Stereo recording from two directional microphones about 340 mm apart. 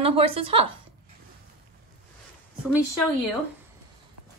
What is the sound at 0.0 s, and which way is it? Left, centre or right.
Speech, centre.